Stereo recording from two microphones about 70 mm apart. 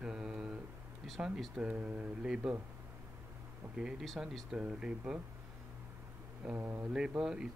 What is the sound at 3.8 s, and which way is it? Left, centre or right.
Speech, centre.